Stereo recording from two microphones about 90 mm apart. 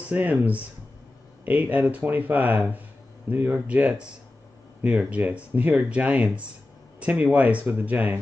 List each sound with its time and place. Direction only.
0.1 s speech: 15° right (ahead or behind)